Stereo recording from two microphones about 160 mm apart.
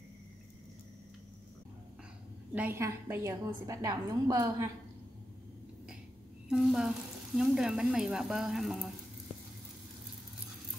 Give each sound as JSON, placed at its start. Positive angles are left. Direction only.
{"t": 2.5, "sound": "a woman's voice", "side_deg": -10}
{"t": 6.5, "sound": "speech", "side_deg": 0}